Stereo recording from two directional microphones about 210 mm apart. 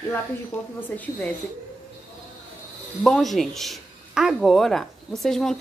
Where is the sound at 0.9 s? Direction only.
5° left (ahead or behind).